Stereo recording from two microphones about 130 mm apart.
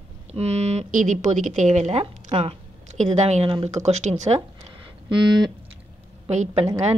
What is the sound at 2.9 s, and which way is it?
Speech, 60° right (ahead or behind).